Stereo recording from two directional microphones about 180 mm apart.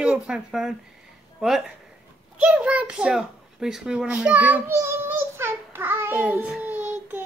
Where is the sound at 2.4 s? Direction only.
5° right (ahead or behind).